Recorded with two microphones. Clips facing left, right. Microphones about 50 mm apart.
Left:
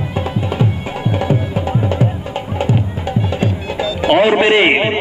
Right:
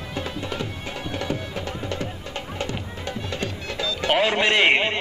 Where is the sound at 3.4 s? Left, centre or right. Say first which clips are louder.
Left 9 dB; centre.